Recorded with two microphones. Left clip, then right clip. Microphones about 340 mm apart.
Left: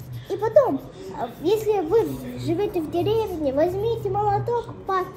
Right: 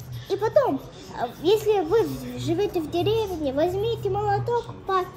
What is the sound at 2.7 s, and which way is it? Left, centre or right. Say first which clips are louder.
Speech: left 1 dB; centre.